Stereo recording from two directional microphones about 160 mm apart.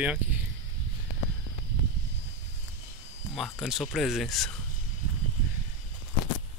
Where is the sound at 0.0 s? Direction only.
10° right (ahead or behind).